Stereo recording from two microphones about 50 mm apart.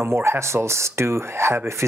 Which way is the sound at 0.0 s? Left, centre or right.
Right.